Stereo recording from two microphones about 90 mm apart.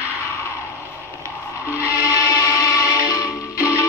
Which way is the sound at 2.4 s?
35° left (ahead or behind).